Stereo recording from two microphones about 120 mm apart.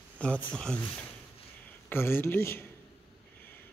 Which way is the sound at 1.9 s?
20° left (ahead or behind).